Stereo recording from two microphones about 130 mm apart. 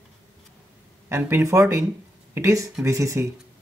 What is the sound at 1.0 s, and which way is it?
Speech, 20° right (ahead or behind).